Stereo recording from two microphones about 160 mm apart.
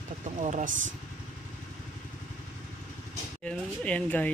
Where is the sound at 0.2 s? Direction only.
50° right (ahead or behind).